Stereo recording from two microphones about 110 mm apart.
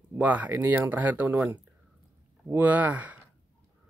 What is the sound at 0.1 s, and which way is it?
Speech, 15° right (ahead or behind).